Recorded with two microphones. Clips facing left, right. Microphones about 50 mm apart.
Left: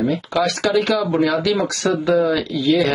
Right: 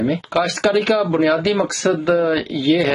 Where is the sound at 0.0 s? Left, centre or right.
Right.